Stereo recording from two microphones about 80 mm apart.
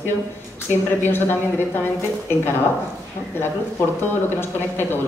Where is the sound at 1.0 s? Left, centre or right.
Left.